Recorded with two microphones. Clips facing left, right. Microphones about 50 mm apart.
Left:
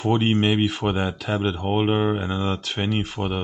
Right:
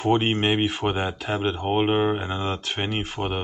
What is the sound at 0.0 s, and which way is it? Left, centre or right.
Speech, centre.